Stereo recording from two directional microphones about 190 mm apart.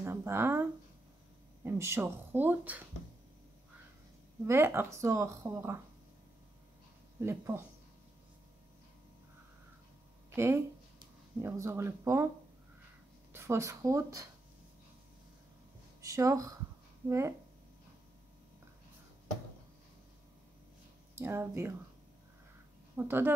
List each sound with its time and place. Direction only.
0.0 s speech: 15° right (ahead or behind)
4.5 s speech: 15° right (ahead or behind)
7.2 s speech: 15° right (ahead or behind)
10.3 s speech: 15° right (ahead or behind)
13.3 s speech: 15° right (ahead or behind)
16.0 s speech: 15° right (ahead or behind)
21.1 s speech: 15° right (ahead or behind)
22.9 s speech: 10° right (ahead or behind)